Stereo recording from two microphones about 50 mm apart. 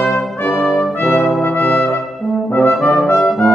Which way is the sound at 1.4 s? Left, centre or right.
Left.